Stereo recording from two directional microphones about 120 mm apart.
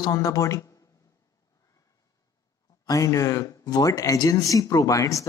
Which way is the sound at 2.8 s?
30° left (ahead or behind).